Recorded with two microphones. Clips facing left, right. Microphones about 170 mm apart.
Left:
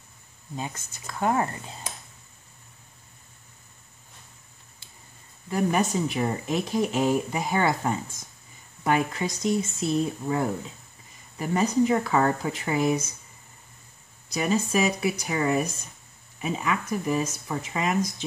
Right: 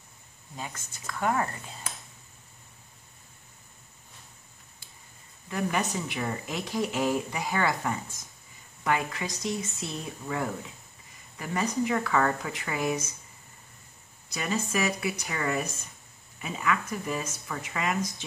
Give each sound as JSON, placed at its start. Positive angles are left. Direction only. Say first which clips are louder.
{"t": 0.6, "sound": "speech", "louder": "left 5 dB", "side_deg": 25}
{"t": 5.5, "sound": "speech", "louder": "left 5 dB", "side_deg": 30}
{"t": 14.3, "sound": "speech", "louder": "left 6 dB", "side_deg": 15}
{"t": 14.7, "sound": "speech", "louder": "left 5 dB", "side_deg": 25}